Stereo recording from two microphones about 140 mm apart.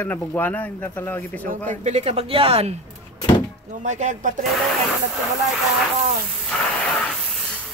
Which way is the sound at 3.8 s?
60° right (ahead or behind).